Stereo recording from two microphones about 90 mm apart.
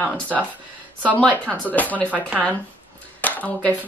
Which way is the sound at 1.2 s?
15° left (ahead or behind).